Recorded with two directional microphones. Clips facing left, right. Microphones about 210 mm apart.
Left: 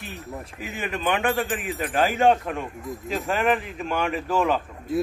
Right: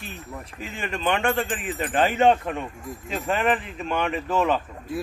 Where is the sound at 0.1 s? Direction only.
5° left (ahead or behind).